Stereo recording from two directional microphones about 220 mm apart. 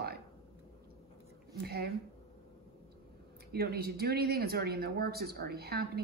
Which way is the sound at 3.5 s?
45° right (ahead or behind).